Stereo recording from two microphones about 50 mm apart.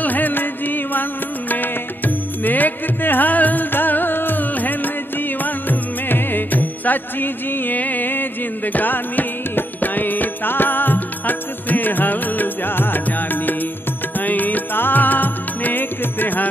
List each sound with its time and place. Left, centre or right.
0.0 s music: left